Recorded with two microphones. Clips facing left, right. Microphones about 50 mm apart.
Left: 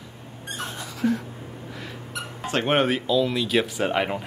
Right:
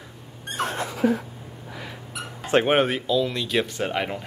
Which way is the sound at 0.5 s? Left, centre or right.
Right.